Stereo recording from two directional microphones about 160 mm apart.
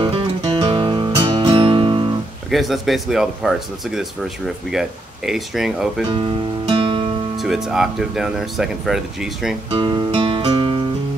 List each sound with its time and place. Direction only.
0.0 s music: 30° right (ahead or behind)
2.5 s speech: centre (ahead or behind)
6.0 s music: 35° right (ahead or behind)
7.3 s speech: centre (ahead or behind)
9.7 s guitar: 30° right (ahead or behind)